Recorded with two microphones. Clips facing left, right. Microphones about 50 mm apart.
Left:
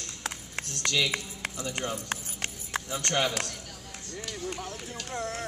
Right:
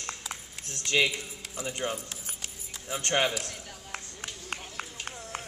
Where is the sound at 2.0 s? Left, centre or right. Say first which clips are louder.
Left 7 dB; left.